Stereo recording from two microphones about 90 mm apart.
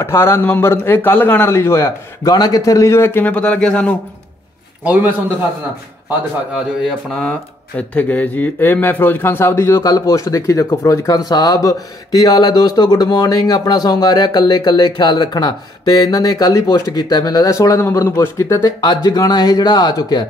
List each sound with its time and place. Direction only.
0.0 s a man's voice: 30° left (ahead or behind)
2.2 s a man's voice: 50° left (ahead or behind); by 3.9 s 10° left (ahead or behind)
7.2 s speech: 15° left (ahead or behind); by 20.2 s 50° left (ahead or behind)